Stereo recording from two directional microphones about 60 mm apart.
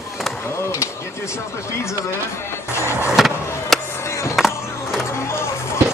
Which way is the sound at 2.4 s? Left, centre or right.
Left.